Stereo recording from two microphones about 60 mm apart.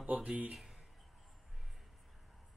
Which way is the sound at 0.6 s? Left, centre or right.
Centre.